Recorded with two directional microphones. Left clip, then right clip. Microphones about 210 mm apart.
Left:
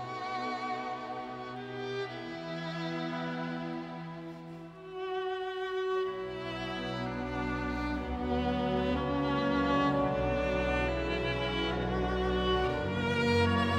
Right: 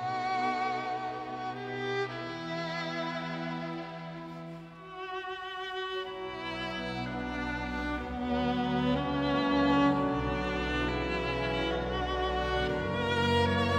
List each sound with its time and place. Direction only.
0.2 s music: 30° right (ahead or behind)
5.8 s music: 10° right (ahead or behind)
7.3 s music: 15° right (ahead or behind)